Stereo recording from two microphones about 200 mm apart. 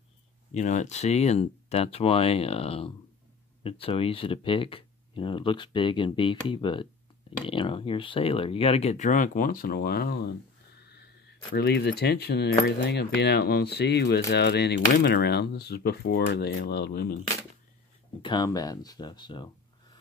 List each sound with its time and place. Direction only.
0.6 s speech: 35° left (ahead or behind); by 10.3 s 50° left (ahead or behind)
11.5 s speech: 55° left (ahead or behind)
18.2 s speech: 20° left (ahead or behind)